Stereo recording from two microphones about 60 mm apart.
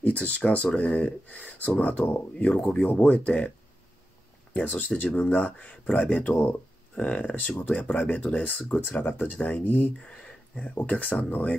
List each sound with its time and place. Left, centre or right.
0.0 s speech: left
4.6 s speech: left
10.1 s a sound: centre
10.6 s speech: left